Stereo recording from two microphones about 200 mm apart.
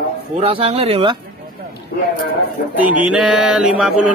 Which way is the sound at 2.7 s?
5° right (ahead or behind).